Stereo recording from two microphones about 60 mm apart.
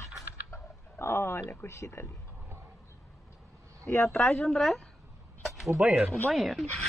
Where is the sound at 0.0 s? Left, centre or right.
Left.